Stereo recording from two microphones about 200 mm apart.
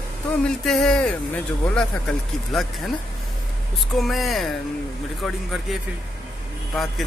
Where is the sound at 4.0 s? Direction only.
Centre (ahead or behind).